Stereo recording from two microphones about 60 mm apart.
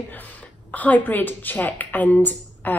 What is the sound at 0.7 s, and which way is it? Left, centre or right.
A woman's voice, left.